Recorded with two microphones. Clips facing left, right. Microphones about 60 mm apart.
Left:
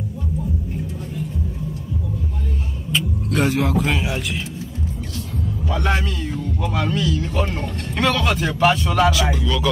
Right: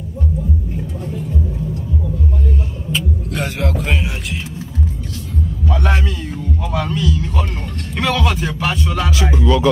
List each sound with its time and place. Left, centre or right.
3.3 s speech: centre
5.9 s speech: centre
9.1 s music: right